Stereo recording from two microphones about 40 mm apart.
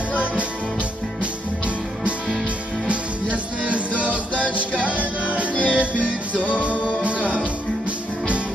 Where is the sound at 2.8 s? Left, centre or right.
Right.